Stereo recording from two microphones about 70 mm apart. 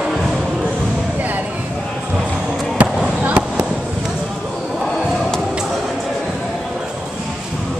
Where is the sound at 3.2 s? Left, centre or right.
Right.